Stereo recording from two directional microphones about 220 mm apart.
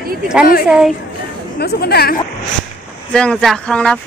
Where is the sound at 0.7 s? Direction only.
5° right (ahead or behind).